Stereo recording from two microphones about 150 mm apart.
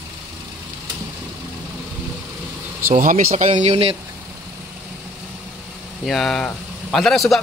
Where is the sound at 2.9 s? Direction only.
55° right (ahead or behind).